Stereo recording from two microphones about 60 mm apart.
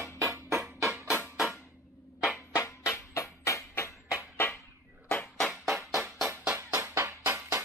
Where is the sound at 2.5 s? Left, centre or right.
Left.